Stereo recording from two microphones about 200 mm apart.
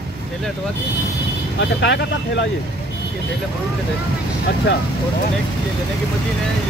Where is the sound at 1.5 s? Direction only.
65° left (ahead or behind).